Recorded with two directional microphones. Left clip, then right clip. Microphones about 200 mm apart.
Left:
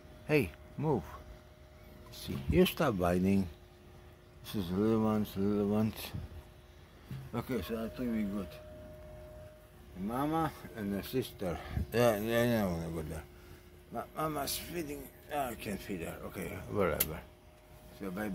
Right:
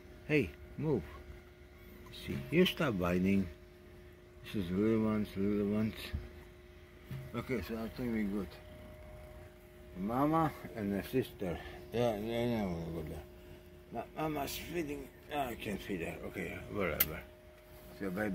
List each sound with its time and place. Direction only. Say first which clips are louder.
0.3 s speech: left 2 dB; 15° left (ahead or behind)
2.2 s speech: left 1 dB; 15° left (ahead or behind)
4.5 s speech: left 1 dB; 10° left (ahead or behind)
7.4 s speech: left 1 dB; 10° left (ahead or behind)
10.0 s speech: right 2 dB; 5° right (ahead or behind)
10.7 s speech: right 1 dB; 5° left (ahead or behind)
11.3 s a man's voice: left 2 dB; 30° left (ahead or behind)
11.9 s a man's voice: left 5 dB; 40° left (ahead or behind)
13.9 s a man's voice: left 2 dB; 25° left (ahead or behind)
18.0 s speech: right 2 dB; 5° right (ahead or behind)